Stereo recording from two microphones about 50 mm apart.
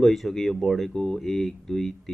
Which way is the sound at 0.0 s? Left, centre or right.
Centre.